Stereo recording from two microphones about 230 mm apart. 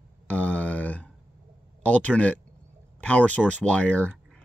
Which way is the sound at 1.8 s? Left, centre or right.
Centre.